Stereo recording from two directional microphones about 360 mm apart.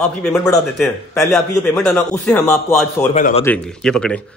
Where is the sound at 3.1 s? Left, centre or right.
Left.